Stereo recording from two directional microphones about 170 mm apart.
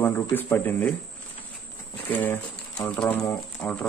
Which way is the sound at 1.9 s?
10° left (ahead or behind).